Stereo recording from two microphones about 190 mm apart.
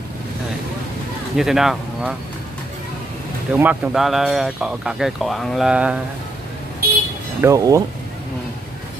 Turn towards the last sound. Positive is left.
turn(degrees=-15)  # may be behind; listen again after turning